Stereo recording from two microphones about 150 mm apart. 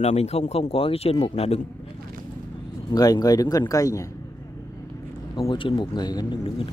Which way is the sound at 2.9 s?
25° left (ahead or behind).